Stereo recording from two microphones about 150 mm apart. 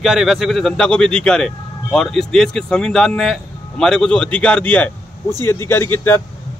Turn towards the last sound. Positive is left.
turn(degrees=15)  # may be behind; listen again after turning